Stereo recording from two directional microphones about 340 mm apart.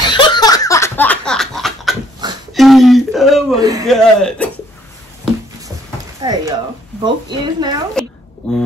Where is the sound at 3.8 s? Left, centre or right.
Centre.